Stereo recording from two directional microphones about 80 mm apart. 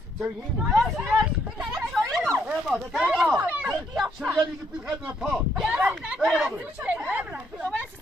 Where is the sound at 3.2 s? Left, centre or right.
Centre.